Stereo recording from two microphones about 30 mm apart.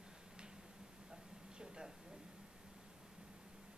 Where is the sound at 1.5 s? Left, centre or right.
Right.